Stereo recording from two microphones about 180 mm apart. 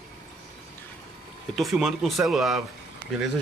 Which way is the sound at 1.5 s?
Centre (ahead or behind).